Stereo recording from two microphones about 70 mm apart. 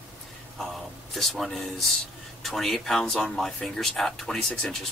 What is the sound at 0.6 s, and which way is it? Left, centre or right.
Speech, centre.